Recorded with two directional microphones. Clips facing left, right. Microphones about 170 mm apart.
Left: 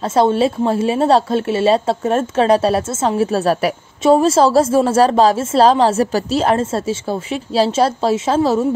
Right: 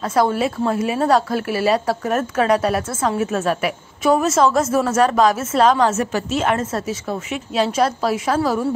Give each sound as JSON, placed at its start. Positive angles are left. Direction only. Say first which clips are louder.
{"t": 0.0, "sound": "a woman's voice", "louder": "left 4 dB", "side_deg": 25}